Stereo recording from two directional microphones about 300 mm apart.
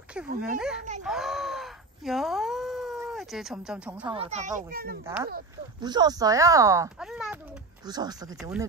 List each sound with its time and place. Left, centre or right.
0.4 s a child's voice: centre
1.0 s a sound: centre
4.1 s a child's voice: right
5.0 s speech: centre
7.8 s a child's voice: centre